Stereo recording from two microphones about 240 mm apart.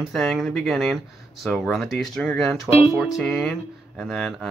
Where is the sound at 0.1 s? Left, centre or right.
Centre.